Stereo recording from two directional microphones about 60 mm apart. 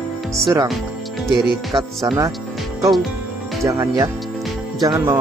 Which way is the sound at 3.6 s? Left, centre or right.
Right.